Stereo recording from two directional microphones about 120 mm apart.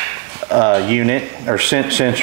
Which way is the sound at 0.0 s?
25° right (ahead or behind).